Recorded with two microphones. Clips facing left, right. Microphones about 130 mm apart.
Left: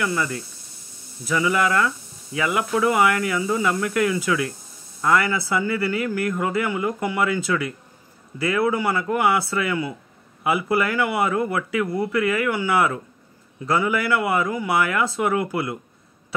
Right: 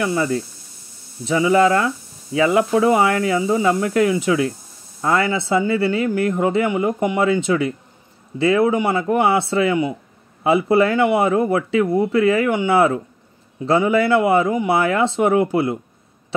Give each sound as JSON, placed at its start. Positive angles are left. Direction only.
{"t": 0.0, "sound": "speech", "side_deg": -25}